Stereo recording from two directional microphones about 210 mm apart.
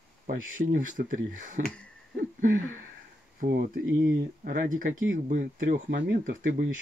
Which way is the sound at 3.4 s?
40° right (ahead or behind).